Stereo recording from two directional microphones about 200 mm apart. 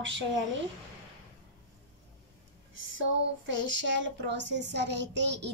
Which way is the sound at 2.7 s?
70° right (ahead or behind).